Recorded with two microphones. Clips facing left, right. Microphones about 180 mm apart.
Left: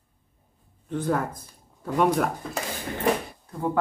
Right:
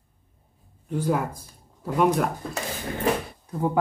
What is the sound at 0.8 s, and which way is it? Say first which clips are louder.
Speech: right 1 dB; 10° right (ahead or behind).